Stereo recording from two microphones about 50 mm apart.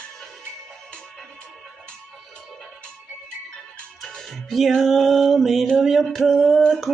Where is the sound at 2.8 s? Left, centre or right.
Centre.